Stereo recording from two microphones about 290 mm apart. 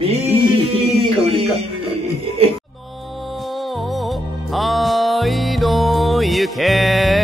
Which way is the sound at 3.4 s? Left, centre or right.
Centre.